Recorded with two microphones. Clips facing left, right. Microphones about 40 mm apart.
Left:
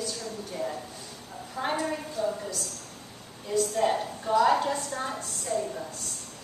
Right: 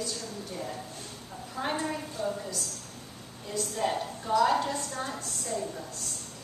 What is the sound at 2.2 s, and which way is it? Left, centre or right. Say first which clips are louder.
Speech: left 3 dB; centre.